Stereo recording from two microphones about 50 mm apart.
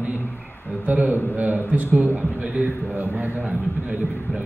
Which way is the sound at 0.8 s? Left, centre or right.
Right.